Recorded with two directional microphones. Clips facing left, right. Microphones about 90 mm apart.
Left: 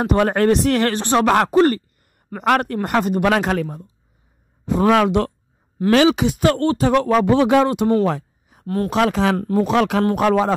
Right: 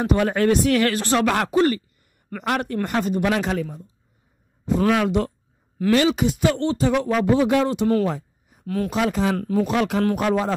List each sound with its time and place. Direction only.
0.0 s speech: 50° left (ahead or behind)
0.9 s speech: 25° left (ahead or behind)
1.2 s speech: 40° left (ahead or behind)
2.4 s speech: 55° left (ahead or behind)
4.8 s speech: 70° left (ahead or behind)
8.0 s a sound: 80° left
8.6 s speech: 40° left (ahead or behind)
8.9 s speech: 85° left
9.4 s speech: 40° left (ahead or behind)
9.7 s speech: 75° left (ahead or behind)